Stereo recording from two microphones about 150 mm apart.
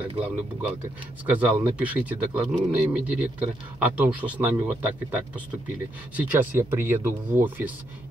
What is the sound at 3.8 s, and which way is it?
Speech, 10° right (ahead or behind).